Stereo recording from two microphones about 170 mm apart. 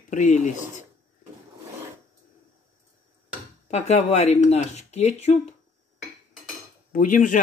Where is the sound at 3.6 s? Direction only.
40° left (ahead or behind).